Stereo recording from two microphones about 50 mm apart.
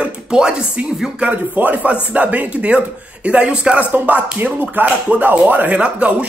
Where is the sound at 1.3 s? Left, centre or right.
Right.